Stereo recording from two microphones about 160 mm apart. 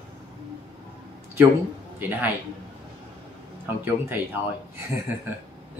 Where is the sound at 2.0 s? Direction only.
10° right (ahead or behind).